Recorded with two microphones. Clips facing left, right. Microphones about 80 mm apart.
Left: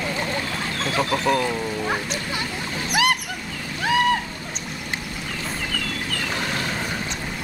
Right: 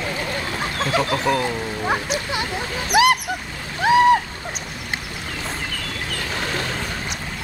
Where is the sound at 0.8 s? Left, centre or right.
Centre.